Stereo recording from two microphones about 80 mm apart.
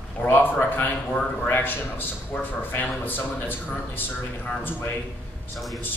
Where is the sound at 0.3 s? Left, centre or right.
Left.